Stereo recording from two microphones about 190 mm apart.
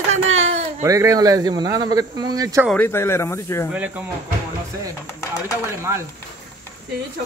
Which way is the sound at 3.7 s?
5° right (ahead or behind).